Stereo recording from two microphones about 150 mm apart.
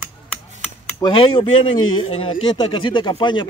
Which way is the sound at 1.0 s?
35° left (ahead or behind).